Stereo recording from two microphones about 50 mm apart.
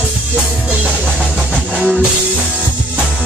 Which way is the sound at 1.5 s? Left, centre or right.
Centre.